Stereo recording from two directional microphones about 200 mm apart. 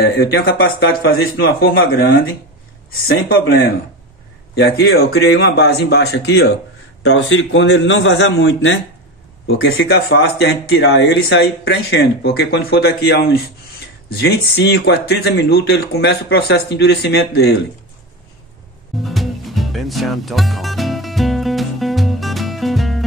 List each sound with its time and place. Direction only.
0.2 s speech: 55° left (ahead or behind)
3.1 s speech: 50° left (ahead or behind)
19.0 s music: centre (ahead or behind)